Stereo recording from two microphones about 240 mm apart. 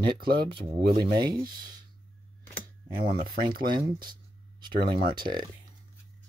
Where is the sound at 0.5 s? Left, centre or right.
Right.